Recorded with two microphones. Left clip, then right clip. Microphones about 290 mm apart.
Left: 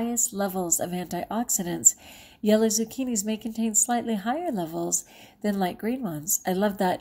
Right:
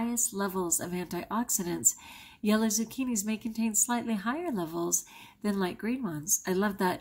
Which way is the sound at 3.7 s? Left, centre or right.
Centre.